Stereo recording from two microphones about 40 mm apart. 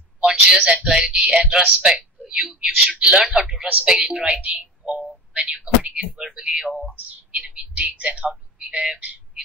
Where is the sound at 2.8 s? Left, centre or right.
Right.